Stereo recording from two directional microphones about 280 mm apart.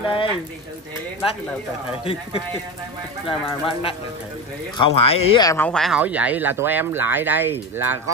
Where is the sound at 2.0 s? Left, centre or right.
Centre.